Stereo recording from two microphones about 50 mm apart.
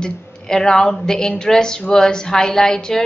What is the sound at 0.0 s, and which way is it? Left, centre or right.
A woman's voice, centre.